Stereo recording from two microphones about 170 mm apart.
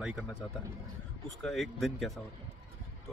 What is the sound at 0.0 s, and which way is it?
Speech, 5° right (ahead or behind).